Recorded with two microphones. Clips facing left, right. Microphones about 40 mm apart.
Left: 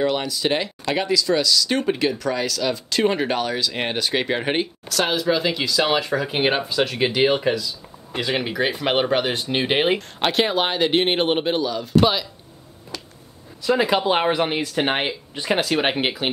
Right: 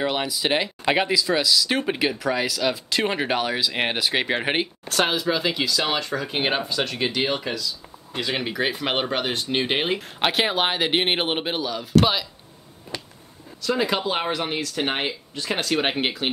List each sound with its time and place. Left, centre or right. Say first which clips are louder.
0.0 s speech: left 3 dB; centre
5.2 s speech: left 2 dB; centre
9.9 s speech: left 2 dB; centre
13.6 s speech: left 4 dB; centre